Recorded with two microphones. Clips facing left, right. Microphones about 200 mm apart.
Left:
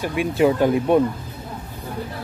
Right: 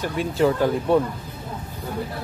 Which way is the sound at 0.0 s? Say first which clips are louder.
Left 2 dB; 15° left (ahead or behind).